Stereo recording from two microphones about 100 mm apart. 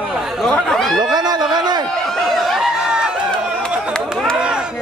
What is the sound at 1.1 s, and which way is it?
Speech, 45° right (ahead or behind).